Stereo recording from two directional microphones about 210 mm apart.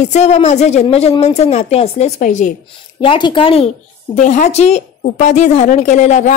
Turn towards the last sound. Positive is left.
turn(degrees=35)  # may be behind; listen again after turning